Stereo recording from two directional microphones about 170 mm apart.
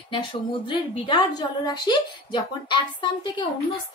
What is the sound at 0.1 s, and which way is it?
A woman's voice, 30° left (ahead or behind).